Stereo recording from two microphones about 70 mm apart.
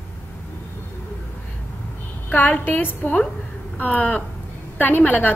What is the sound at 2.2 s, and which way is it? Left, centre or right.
A woman's voice, left.